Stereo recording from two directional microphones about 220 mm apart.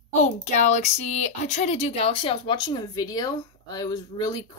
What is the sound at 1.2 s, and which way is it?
Speech, 30° left (ahead or behind).